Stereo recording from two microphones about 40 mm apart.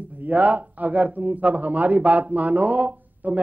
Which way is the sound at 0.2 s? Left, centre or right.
Right.